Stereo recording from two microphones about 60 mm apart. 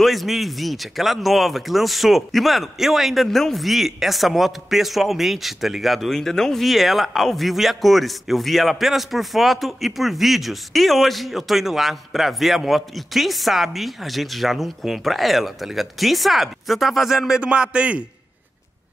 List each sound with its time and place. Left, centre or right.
0.0 s speech: centre
17.4 s a man's voice: centre